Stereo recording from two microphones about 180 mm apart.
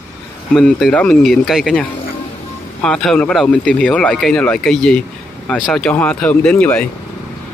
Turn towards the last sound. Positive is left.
turn(degrees=5)  # may be behind; listen again after turning